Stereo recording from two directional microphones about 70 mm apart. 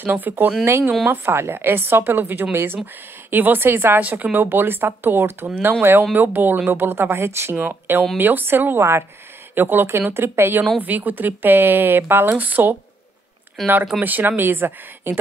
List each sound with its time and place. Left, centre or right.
0.0 s speech: right
0.7 s a woman's voice: right
13.6 s speech: centre
14.0 s a woman's voice: right